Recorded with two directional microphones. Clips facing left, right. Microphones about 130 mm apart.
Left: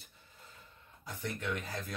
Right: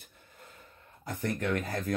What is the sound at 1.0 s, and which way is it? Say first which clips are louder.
Speech: right 7 dB; 50° right (ahead or behind).